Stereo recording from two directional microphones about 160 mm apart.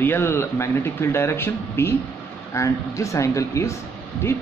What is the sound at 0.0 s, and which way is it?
Speech, 15° left (ahead or behind).